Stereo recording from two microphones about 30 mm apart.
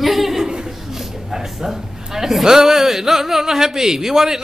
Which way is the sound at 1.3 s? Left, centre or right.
Centre.